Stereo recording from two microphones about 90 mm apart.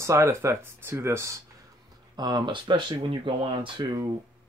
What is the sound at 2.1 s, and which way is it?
Speech, 50° right (ahead or behind).